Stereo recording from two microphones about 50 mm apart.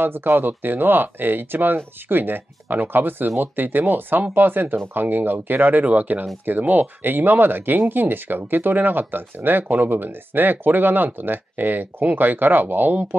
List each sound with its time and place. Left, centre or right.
0.0 s speech: right